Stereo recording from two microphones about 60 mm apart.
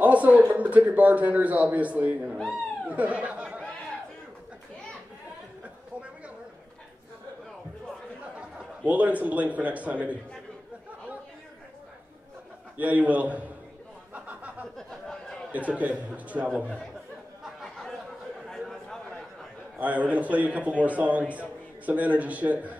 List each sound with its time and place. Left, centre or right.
0.0 s a man's voice: right
5.6 s chatter: right
8.8 s a man's voice: right
12.7 s a man's voice: right
14.1 s a sound: right
14.8 s a sound: centre
15.5 s a man's voice: right
17.6 s chatter: centre
18.5 s a sound: centre
19.8 s a man's voice: right